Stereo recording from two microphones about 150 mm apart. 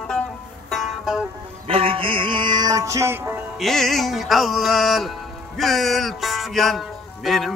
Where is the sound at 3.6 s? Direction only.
Centre (ahead or behind).